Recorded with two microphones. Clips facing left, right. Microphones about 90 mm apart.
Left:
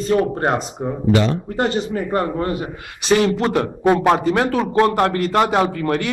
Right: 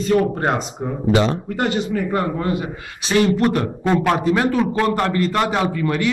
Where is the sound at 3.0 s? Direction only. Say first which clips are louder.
Even; 75° left (ahead or behind).